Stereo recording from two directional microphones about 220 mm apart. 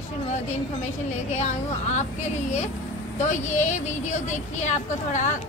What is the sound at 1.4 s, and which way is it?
Speech, 30° left (ahead or behind).